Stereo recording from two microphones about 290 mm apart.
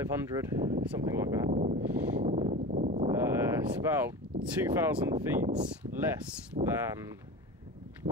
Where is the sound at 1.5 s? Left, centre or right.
Right.